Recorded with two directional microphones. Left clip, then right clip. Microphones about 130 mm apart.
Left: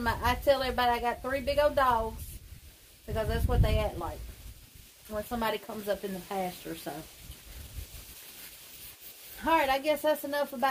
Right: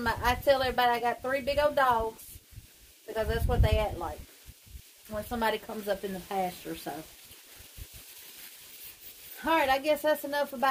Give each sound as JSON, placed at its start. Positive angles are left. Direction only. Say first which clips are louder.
{"t": 0.0, "sound": "a woman's voice", "louder": "right 1 dB", "side_deg": -30}
{"t": 3.2, "sound": "a woman's voice", "louder": "right 1 dB", "side_deg": -35}
{"t": 5.1, "sound": "a woman's voice", "louder": "right 2 dB", "side_deg": -30}
{"t": 9.4, "sound": "speech", "louder": "even", "side_deg": -30}